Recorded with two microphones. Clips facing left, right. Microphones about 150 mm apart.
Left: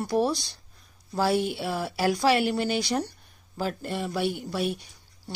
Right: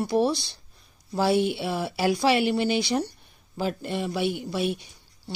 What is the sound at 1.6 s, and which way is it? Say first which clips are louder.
Speech: right 1 dB; centre (ahead or behind).